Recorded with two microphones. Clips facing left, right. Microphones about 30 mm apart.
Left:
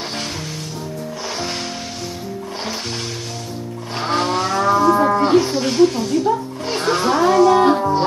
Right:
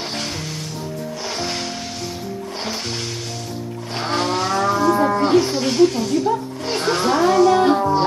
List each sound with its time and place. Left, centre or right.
4.0 s livestock: centre